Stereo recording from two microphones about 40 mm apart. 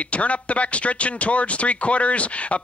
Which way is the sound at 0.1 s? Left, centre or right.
Left.